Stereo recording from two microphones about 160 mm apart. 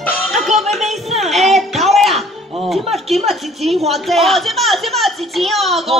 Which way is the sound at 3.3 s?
Centre (ahead or behind).